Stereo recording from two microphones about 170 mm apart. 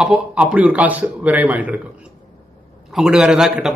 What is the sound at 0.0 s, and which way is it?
Speech, 5° right (ahead or behind).